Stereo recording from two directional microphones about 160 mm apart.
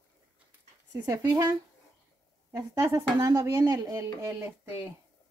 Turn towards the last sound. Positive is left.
turn(degrees=-15)  # may be behind; listen again after turning